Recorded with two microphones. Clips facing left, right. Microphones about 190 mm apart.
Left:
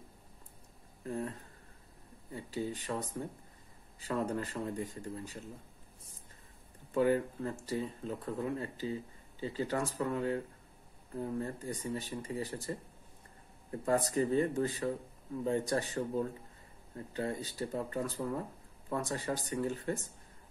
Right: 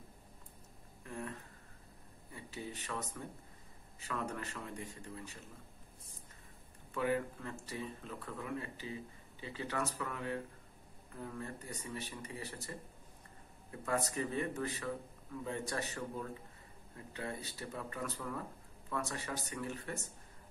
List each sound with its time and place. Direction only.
1.0 s speech: 35° left (ahead or behind)
2.3 s speech: 30° left (ahead or behind)
6.9 s speech: 30° left (ahead or behind)